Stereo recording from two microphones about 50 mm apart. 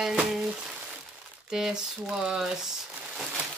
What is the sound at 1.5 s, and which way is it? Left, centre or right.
Speech, centre.